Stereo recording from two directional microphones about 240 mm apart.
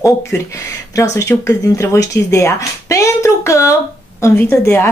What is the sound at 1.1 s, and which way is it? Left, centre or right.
Speech, centre.